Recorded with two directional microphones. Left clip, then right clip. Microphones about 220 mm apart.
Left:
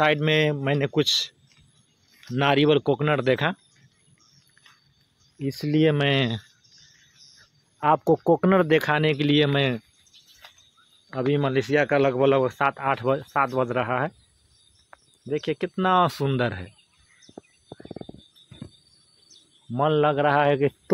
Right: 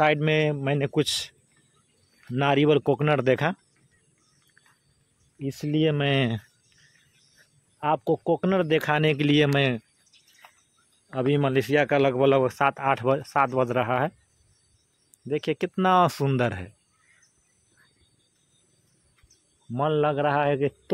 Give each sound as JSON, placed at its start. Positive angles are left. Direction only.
{"t": 0.0, "sound": "speech", "side_deg": -10}
{"t": 2.3, "sound": "speech", "side_deg": -10}
{"t": 5.5, "sound": "speech", "side_deg": -5}
{"t": 7.8, "sound": "speech", "side_deg": 0}
{"t": 11.3, "sound": "speech", "side_deg": -15}
{"t": 15.2, "sound": "speech", "side_deg": -15}
{"t": 19.7, "sound": "a man's voice", "side_deg": -5}